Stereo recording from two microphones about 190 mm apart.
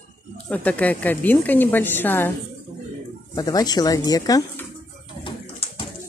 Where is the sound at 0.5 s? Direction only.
10° left (ahead or behind).